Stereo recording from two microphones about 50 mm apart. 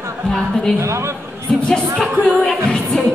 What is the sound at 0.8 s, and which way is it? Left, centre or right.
Speech, right.